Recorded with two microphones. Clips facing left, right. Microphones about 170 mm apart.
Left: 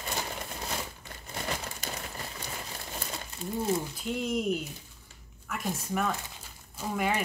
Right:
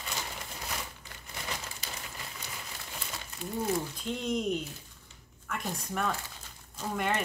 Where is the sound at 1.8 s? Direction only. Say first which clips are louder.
Left 5 dB; 50° left (ahead or behind).